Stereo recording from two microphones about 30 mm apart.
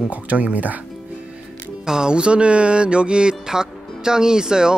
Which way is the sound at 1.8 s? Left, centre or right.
Right.